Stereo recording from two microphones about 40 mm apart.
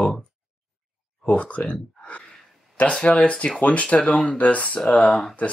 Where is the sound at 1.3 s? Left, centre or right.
Left.